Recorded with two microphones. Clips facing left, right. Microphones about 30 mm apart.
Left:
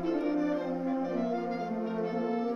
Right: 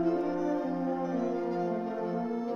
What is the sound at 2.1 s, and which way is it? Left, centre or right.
Brass instrument, left.